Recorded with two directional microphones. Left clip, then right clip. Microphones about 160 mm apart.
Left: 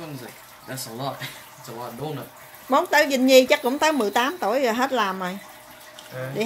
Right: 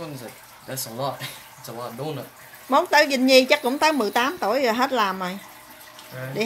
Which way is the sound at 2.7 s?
Centre (ahead or behind).